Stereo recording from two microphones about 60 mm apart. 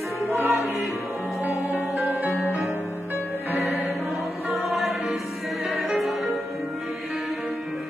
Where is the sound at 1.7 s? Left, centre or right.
Right.